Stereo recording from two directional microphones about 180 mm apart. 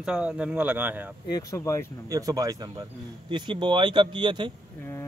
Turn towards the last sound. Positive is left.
turn(degrees=-25)  # may be behind; listen again after turning